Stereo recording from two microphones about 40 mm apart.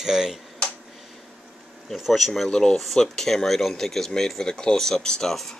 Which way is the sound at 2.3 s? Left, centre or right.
Centre.